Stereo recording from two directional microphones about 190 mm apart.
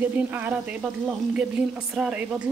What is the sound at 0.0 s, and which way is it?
Speech, 10° right (ahead or behind).